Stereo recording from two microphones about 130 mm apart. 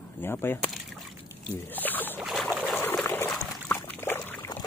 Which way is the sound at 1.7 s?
15° left (ahead or behind).